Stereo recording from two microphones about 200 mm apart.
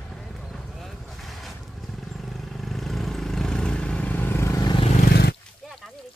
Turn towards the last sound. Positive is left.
turn(degrees=0)  # may be behind; listen again after turning